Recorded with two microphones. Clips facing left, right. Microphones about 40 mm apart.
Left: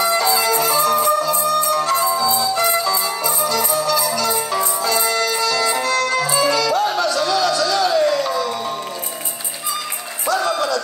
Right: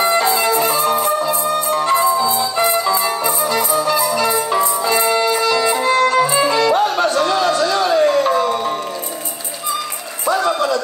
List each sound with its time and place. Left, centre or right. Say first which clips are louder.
0.0 s music: right 2 dB; right
10.2 s music: right 3 dB; right